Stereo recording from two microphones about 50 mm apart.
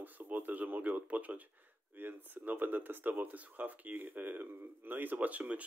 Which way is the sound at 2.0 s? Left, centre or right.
Right.